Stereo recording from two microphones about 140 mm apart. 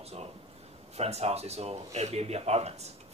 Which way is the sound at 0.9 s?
45° right (ahead or behind).